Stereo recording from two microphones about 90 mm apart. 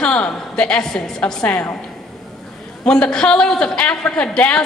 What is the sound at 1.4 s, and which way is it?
Speech, 20° left (ahead or behind).